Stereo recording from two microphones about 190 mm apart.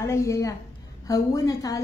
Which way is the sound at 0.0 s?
15° left (ahead or behind).